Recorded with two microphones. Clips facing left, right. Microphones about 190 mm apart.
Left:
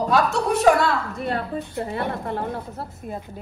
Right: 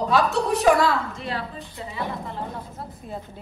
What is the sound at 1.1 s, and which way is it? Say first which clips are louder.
A woman's voice: left 5 dB; 60° left (ahead or behind).